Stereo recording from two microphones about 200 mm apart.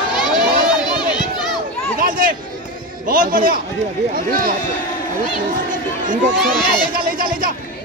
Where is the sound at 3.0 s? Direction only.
45° right (ahead or behind).